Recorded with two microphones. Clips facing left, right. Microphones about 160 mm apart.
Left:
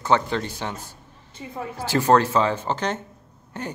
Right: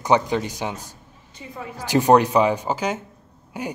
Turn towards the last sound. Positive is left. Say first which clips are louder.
# right 2 dB
turn(degrees=-10)  # may be behind; listen again after turning